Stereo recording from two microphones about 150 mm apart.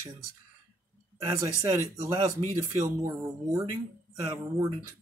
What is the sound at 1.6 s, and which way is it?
Speech, 25° right (ahead or behind).